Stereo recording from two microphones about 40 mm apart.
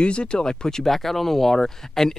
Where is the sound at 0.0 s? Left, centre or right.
Left.